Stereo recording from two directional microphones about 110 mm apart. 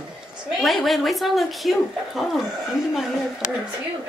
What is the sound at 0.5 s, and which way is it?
A woman's voice, centre (ahead or behind).